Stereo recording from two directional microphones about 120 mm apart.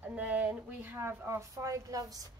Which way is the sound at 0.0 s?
10° right (ahead or behind).